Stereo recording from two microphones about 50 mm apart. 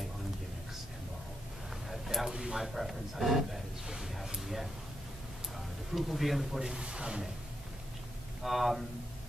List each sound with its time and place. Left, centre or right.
1.9 s a sound: centre
5.9 s speech: centre
6.8 s speech: centre
8.4 s speech: centre